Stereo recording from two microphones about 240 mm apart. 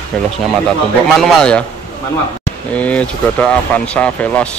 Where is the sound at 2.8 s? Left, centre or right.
Centre.